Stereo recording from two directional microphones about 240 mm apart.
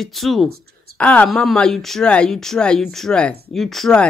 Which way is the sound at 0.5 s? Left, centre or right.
Right.